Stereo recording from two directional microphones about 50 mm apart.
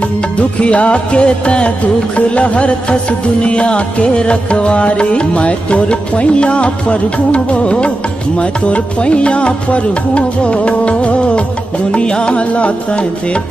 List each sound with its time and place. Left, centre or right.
0.4 s music: left